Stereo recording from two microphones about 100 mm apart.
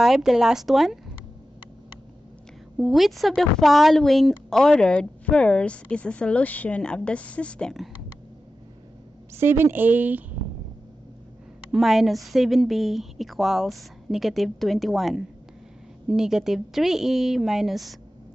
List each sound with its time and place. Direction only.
0.0 s a woman's voice: 5° right (ahead or behind)
2.8 s a woman's voice: centre (ahead or behind)
9.3 s a woman's voice: 25° right (ahead or behind)
11.7 s a woman's voice: 5° right (ahead or behind)